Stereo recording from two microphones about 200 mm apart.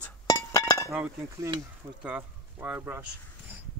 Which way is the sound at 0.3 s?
15° left (ahead or behind).